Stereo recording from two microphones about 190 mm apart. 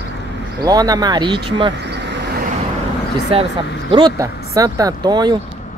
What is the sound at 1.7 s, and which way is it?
Vehicle, 65° right (ahead or behind).